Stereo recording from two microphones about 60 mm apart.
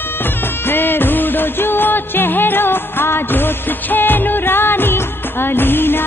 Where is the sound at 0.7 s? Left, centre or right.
Left.